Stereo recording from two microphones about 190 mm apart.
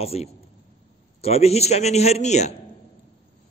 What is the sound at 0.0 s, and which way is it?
A man's voice, 35° left (ahead or behind).